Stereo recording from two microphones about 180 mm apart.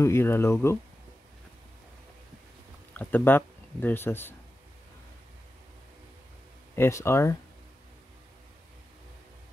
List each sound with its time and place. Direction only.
0.0 s speech: 15° left (ahead or behind)
2.9 s speech: 10° left (ahead or behind)
6.7 s speech: 15° left (ahead or behind)